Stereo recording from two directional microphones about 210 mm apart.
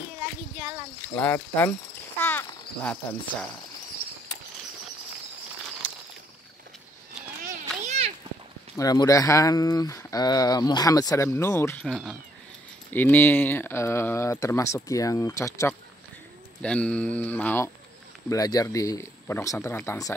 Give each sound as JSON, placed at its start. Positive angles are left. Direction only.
{"t": 1.2, "sound": "speech", "side_deg": 10}
{"t": 7.4, "sound": "a sound", "side_deg": -35}
{"t": 8.7, "sound": "speech", "side_deg": 15}